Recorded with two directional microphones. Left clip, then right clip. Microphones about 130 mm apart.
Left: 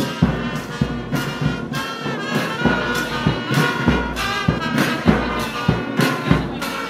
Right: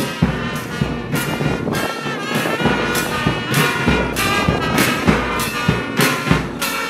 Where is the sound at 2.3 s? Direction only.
15° right (ahead or behind).